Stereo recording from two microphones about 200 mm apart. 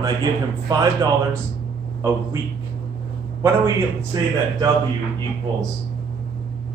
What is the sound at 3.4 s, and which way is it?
A man's voice, 15° right (ahead or behind).